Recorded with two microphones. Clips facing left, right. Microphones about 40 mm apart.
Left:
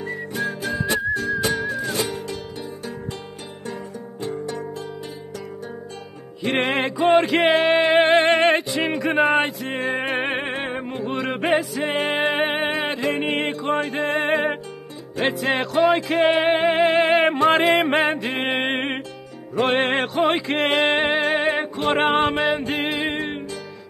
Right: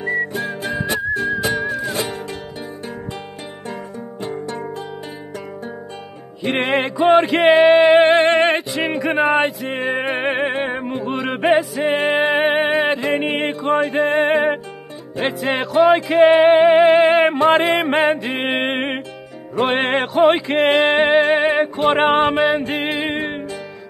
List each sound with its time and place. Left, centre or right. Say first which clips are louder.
0.4 s whistling: right 1 dB; right
0.8 s music: right 2 dB; centre
4.2 s music: right 1 dB; right
6.4 s music: right 3 dB; centre